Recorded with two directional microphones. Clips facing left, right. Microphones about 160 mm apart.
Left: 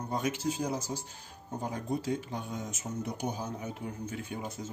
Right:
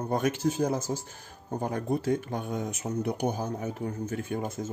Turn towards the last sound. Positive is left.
turn(degrees=-50)  # may be behind; listen again after turning